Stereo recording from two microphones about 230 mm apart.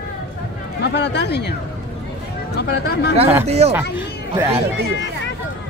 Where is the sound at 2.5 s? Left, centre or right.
Left.